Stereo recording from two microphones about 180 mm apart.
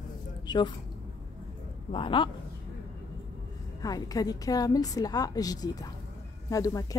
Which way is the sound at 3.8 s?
20° left (ahead or behind).